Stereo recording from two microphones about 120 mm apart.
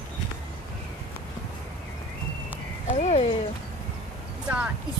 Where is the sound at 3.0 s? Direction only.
65° left (ahead or behind).